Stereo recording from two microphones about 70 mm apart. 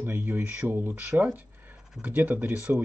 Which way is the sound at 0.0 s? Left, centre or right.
Right.